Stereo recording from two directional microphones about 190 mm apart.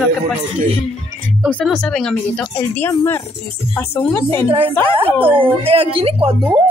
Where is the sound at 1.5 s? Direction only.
5° left (ahead or behind).